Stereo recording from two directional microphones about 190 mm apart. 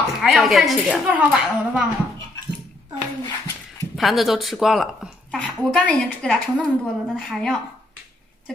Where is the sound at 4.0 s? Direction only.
Centre (ahead or behind).